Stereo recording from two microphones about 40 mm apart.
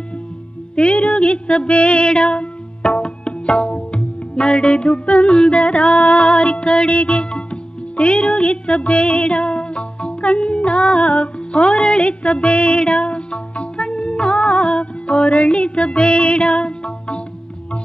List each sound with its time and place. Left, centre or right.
0.7 s music: left